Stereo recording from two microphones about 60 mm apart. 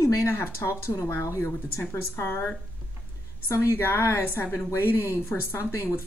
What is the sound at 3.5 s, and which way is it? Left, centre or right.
Speech, left.